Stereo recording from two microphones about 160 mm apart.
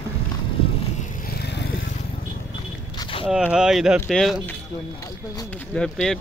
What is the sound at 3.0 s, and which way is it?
Walk, 35° left (ahead or behind).